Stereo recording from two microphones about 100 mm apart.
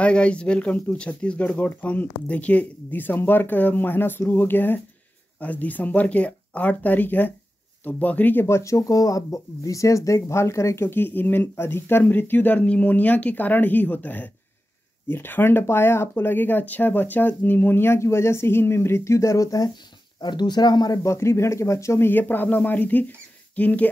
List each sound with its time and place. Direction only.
0.0 s speech: 10° left (ahead or behind); by 19.7 s 35° left (ahead or behind)
20.2 s speech: 45° left (ahead or behind)
21.0 s speech: 30° left (ahead or behind)